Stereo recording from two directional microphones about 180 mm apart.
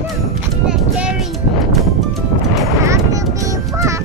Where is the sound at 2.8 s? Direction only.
15° right (ahead or behind).